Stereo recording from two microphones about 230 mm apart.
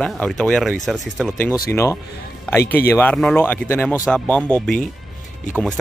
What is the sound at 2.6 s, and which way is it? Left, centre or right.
Speech, left.